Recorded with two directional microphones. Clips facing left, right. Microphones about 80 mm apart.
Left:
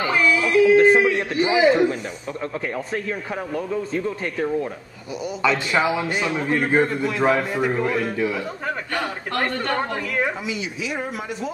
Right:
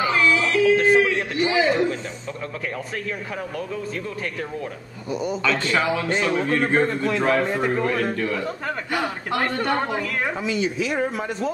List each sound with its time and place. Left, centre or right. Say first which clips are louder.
0.1 s yodeling: left 1 dB; centre
1.0 s a man's voice: left 2 dB; left
8.9 s speech: right 4 dB; centre
10.1 s speech: even; centre